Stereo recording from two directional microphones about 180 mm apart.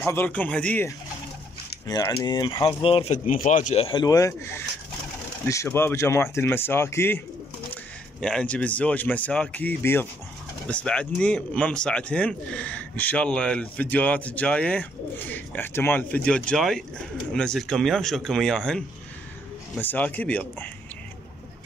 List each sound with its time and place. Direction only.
0.0 s speech: 10° left (ahead or behind)
1.9 s speech: 20° left (ahead or behind)
3.3 s speech: 50° left (ahead or behind); by 20.7 s 10° left (ahead or behind)